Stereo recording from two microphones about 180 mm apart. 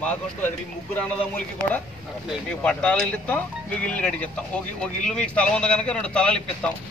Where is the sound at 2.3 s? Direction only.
5° left (ahead or behind).